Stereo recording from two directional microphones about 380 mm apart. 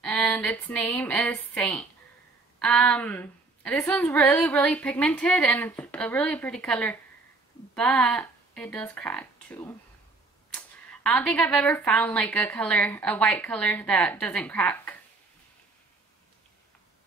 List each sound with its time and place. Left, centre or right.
0.0 s speech: centre